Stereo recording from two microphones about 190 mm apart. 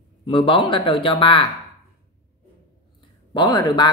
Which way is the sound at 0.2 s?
25° left (ahead or behind).